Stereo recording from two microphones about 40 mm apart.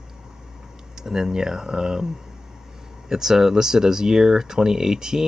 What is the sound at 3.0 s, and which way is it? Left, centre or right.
Speech, centre.